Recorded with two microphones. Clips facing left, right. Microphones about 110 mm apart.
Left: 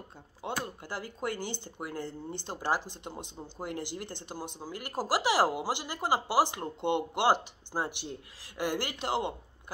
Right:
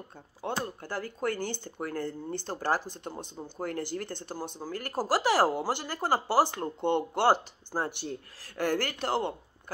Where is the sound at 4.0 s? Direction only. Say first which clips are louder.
Right 4 dB; 50° right (ahead or behind).